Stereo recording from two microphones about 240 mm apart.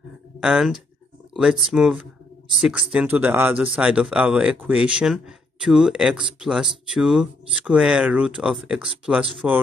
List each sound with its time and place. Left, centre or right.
0.4 s speech: centre